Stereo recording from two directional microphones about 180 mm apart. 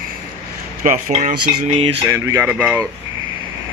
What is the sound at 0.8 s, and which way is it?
Cutlery, 45° right (ahead or behind).